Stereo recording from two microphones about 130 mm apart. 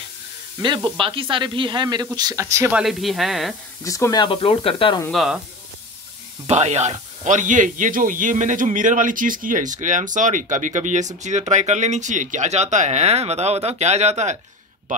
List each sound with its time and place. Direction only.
0.8 s sizzle: 40° right (ahead or behind)
1.3 s speech: 40° right (ahead or behind); by 2.7 s 20° right (ahead or behind)
2.7 s speech: centre (ahead or behind)
3.8 s speech: 25° left (ahead or behind); by 5.0 s 40° left (ahead or behind)
5.1 s speech: centre (ahead or behind)
6.4 s speech: 60° right (ahead or behind)